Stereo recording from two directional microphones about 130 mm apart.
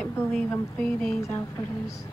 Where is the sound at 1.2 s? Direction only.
20° left (ahead or behind).